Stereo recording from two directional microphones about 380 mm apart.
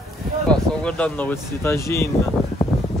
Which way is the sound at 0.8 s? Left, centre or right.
Centre.